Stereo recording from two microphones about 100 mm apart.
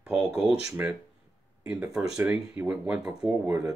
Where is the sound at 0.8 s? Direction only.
20° right (ahead or behind).